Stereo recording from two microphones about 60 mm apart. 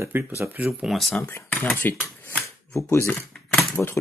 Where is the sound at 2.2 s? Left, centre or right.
Left.